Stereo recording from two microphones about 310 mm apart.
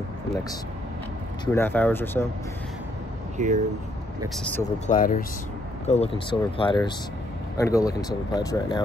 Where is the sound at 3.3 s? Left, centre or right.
Right.